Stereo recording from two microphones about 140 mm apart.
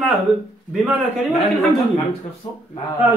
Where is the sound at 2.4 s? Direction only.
40° left (ahead or behind).